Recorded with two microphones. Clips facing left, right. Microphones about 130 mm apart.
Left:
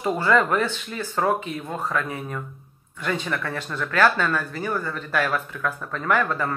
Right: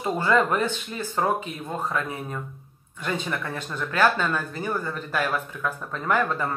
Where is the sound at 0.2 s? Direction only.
20° right (ahead or behind).